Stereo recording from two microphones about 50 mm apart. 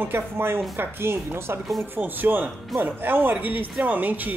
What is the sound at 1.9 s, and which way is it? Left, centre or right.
Speech, right.